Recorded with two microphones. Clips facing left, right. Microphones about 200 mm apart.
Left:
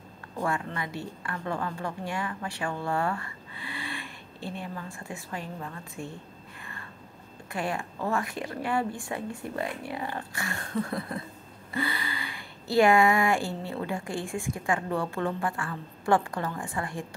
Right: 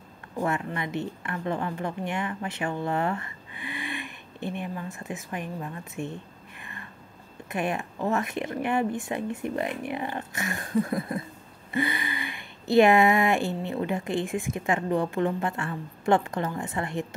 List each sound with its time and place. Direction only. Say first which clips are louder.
0.4 s a woman's voice: right 2 dB; 20° right (ahead or behind)
6.6 s a sound: right 2 dB; 20° right (ahead or behind)
7.5 s speech: right 3 dB; 20° right (ahead or behind)